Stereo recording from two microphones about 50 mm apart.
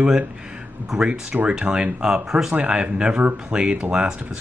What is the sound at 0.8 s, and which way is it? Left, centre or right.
Speech, centre.